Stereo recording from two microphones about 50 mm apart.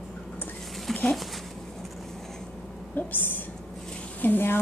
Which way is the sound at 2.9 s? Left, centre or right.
Left.